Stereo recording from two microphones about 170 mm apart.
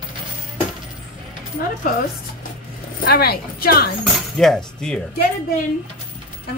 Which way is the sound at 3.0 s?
65° left (ahead or behind).